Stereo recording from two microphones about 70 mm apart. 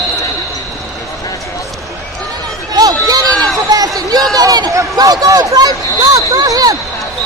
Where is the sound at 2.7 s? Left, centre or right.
Right.